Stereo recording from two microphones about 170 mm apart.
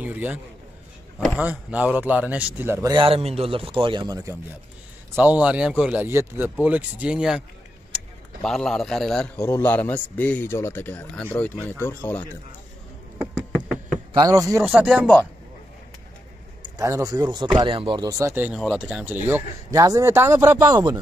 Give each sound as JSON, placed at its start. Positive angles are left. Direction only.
{"t": 0.0, "sound": "a man's voice", "side_deg": -10}
{"t": 2.9, "sound": "a man's voice", "side_deg": -30}
{"t": 5.1, "sound": "a man's voice", "side_deg": -10}
{"t": 14.1, "sound": "speech", "side_deg": -20}
{"t": 14.7, "sound": "a man's voice", "side_deg": -5}
{"t": 16.6, "sound": "speech", "side_deg": -20}
{"t": 18.6, "sound": "a man's voice", "side_deg": 0}